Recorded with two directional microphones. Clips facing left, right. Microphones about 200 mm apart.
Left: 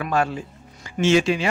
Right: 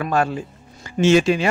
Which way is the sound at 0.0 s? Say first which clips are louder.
Right 2 dB; 45° right (ahead or behind).